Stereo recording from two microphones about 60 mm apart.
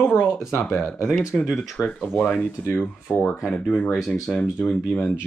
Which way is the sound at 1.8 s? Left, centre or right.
Centre.